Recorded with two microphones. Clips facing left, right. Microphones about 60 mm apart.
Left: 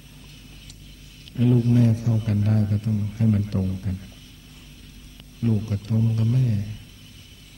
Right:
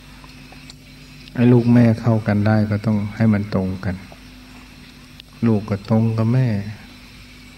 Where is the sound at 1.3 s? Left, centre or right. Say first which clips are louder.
Right 7 dB; right.